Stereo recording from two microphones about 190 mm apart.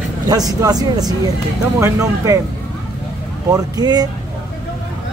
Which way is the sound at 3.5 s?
20° right (ahead or behind).